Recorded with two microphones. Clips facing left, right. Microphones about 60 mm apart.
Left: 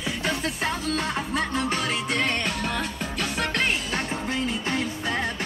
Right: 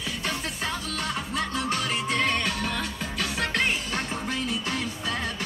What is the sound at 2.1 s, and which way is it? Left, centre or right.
Music, centre.